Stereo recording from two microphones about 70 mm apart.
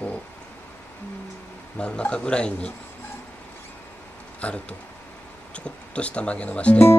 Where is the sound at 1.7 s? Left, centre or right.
Centre.